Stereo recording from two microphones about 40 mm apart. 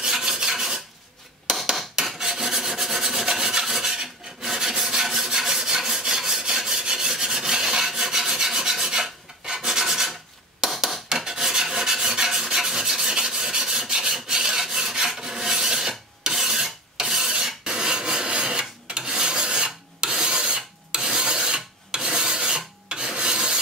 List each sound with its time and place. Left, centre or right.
0.0 s filing: centre
1.5 s filing: centre
6.4 s rub: centre
7.1 s filing: centre
10.6 s a sound: centre
11.1 s filing: centre
14.1 s rub: centre
15.1 s filing: centre